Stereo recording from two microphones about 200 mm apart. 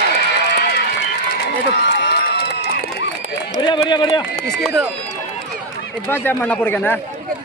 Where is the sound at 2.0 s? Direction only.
55° left (ahead or behind).